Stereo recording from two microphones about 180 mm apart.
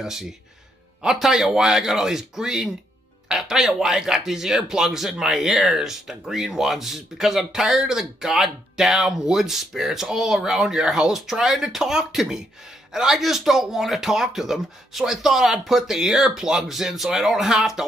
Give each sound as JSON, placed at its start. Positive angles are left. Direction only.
{"t": 0.0, "sound": "speech", "side_deg": 0}